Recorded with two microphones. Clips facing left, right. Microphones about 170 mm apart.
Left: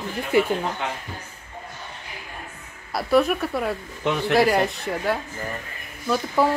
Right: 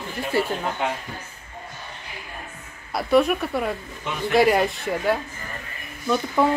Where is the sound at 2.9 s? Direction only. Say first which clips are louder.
Right 1 dB; centre (ahead or behind).